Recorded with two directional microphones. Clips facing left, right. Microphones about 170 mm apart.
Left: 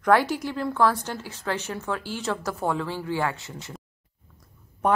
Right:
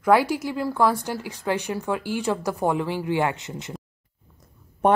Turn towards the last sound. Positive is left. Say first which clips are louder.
# right 4 dB
turn(degrees=-25)  # may be behind; listen again after turning